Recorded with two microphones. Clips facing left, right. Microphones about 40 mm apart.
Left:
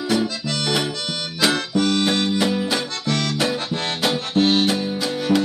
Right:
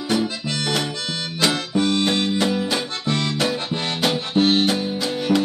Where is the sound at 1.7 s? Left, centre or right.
Right.